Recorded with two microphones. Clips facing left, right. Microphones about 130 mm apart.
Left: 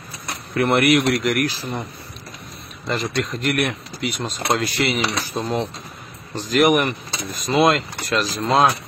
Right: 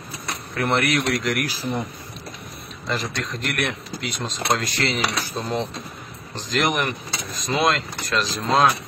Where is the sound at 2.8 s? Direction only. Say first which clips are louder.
Left 4 dB; centre (ahead or behind).